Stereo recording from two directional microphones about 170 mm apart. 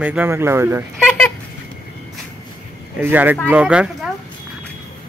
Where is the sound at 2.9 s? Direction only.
10° right (ahead or behind).